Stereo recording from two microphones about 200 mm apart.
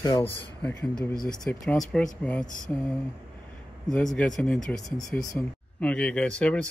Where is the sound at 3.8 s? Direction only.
5° left (ahead or behind).